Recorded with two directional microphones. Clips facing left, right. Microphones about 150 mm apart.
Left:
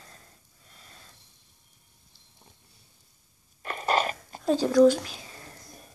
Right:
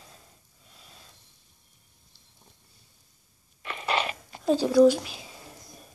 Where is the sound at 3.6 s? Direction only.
45° left (ahead or behind).